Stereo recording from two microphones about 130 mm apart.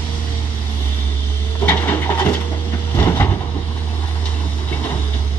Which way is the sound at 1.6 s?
15° left (ahead or behind).